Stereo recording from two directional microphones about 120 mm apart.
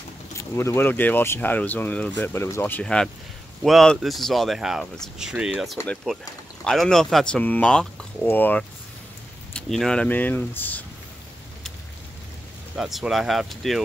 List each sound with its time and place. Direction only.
0.6 s speech: 20° left (ahead or behind)
9.6 s speech: 5° left (ahead or behind)
12.7 s speech: 5° right (ahead or behind)